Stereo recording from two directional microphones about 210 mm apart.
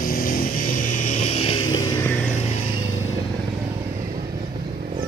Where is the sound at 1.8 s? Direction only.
10° left (ahead or behind).